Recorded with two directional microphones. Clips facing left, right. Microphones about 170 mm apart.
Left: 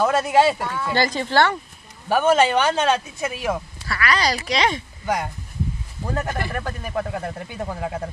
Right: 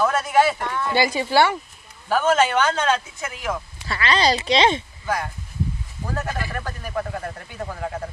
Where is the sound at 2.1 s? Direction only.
20° left (ahead or behind).